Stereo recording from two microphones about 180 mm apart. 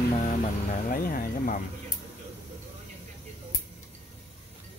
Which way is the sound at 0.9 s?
50° left (ahead or behind).